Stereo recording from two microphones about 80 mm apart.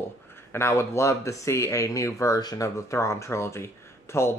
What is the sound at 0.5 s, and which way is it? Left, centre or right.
Speech, left.